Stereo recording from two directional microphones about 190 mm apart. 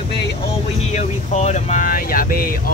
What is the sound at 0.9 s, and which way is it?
Vehicle, 35° left (ahead or behind).